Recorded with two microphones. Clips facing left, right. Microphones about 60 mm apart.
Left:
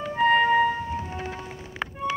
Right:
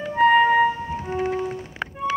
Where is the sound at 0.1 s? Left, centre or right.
Centre.